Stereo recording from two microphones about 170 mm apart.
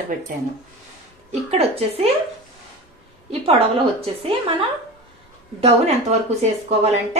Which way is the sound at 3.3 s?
35° right (ahead or behind).